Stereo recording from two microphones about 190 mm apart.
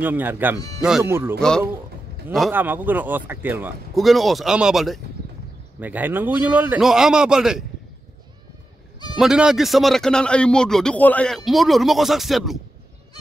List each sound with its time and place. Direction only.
0.0 s speech: 10° right (ahead or behind)
0.6 s speech: 20° left (ahead or behind)
1.0 s speech: 15° right (ahead or behind)
2.5 s speech: 10° right (ahead or behind)
9.1 s a man's voice: 5° right (ahead or behind)